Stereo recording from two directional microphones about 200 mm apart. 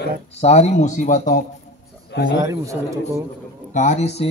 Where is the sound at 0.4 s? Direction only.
35° left (ahead or behind).